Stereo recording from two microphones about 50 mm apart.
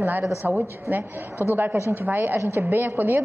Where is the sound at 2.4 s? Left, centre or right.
Right.